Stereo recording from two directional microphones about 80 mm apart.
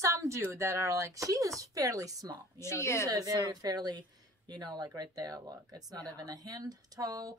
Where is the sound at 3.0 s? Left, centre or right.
Right.